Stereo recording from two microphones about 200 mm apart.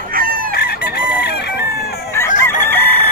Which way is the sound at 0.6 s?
55° left (ahead or behind).